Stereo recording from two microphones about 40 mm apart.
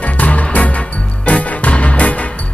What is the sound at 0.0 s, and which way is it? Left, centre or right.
Music, left.